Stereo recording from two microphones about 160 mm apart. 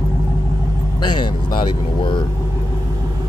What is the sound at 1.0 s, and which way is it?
Speech, 30° left (ahead or behind).